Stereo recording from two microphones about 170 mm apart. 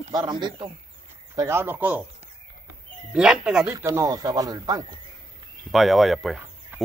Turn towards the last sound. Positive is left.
turn(degrees=0)  # may be behind; listen again after turning